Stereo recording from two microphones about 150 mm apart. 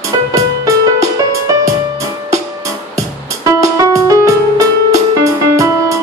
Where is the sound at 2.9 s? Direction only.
20° right (ahead or behind).